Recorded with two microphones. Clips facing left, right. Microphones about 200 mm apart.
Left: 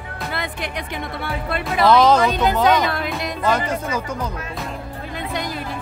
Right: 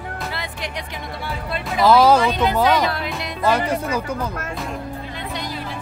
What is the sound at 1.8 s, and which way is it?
Speech, 5° right (ahead or behind).